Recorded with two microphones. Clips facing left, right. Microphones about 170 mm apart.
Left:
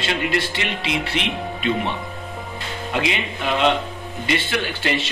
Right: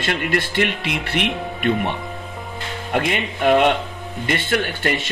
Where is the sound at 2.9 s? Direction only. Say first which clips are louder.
Right 3 dB; 50° right (ahead or behind).